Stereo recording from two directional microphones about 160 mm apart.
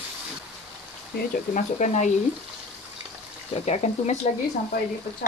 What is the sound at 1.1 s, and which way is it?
Speech, 50° left (ahead or behind).